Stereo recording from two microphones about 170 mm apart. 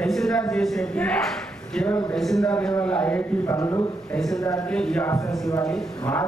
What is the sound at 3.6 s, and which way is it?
Speech, 20° left (ahead or behind).